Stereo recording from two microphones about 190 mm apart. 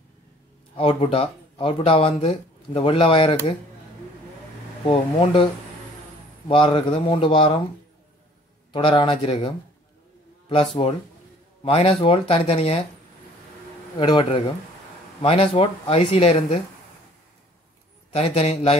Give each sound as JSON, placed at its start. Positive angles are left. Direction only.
{"t": 0.7, "sound": "speech", "side_deg": 30}
{"t": 4.8, "sound": "speech", "side_deg": 30}
{"t": 8.7, "sound": "speech", "side_deg": 25}
{"t": 10.8, "sound": "speech", "side_deg": 30}
{"t": 13.9, "sound": "speech", "side_deg": 25}
{"t": 18.1, "sound": "speech", "side_deg": 30}